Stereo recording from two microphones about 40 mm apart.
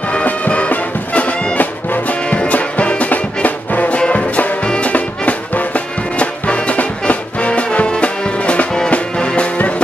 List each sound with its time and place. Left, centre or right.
0.2 s music: left
8.4 s music: left